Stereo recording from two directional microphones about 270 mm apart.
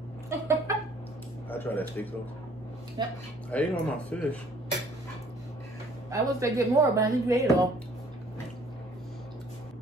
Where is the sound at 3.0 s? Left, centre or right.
Centre.